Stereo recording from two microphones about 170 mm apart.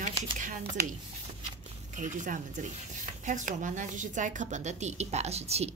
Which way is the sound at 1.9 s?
45° right (ahead or behind).